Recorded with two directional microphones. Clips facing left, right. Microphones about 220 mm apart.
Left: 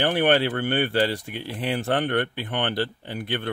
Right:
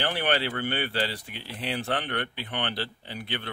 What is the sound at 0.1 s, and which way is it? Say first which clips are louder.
Speech: left 7 dB; 50° left (ahead or behind).